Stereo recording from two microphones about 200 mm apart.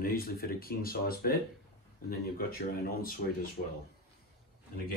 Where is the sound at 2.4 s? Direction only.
50° left (ahead or behind).